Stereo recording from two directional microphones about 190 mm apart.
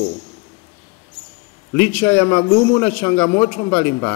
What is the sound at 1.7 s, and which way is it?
A man's voice, 10° left (ahead or behind).